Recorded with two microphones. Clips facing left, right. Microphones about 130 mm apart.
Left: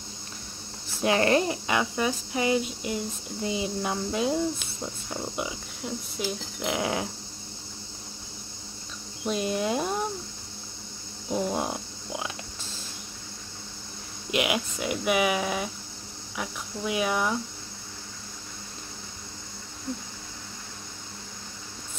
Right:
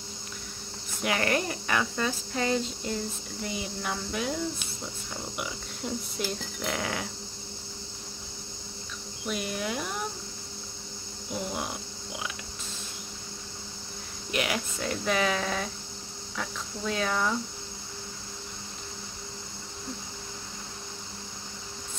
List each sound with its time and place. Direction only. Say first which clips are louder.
1.0 s speech: left 5 dB; 25° left (ahead or behind)
5.9 s speech: left 1 dB; 5° left (ahead or behind)
6.6 s speech: left 5 dB; 20° left (ahead or behind)
9.2 s speech: left 5 dB; 30° left (ahead or behind)
11.2 s speech: left 6 dB; 35° left (ahead or behind)
14.3 s speech: left 3 dB; 20° left (ahead or behind)